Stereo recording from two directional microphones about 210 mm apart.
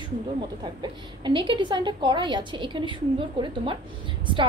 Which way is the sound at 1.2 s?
20° right (ahead or behind).